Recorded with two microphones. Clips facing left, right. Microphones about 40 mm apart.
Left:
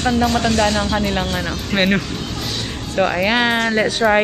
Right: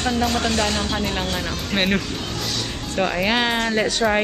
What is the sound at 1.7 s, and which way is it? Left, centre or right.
Speech, left.